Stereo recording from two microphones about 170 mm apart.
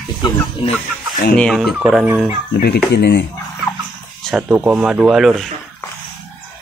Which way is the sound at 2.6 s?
70° left (ahead or behind).